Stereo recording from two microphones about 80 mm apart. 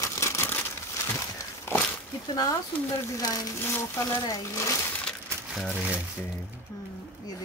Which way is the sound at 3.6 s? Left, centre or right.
Left.